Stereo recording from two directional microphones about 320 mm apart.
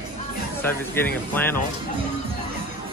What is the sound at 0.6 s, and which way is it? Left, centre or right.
Speech, centre.